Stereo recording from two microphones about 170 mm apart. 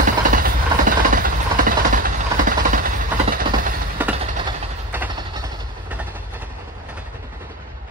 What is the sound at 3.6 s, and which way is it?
Train, 55° right (ahead or behind).